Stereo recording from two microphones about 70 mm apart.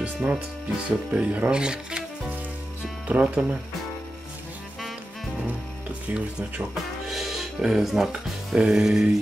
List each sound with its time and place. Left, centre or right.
0.0 s speech: centre
3.1 s speech: centre
6.0 s speech: centre
7.1 s speech: centre